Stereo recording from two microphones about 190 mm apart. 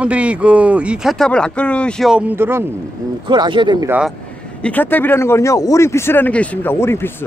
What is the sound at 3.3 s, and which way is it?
Speech, 25° right (ahead or behind).